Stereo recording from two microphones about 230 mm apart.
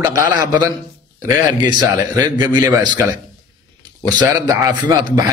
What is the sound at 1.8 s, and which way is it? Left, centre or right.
A man's voice, centre.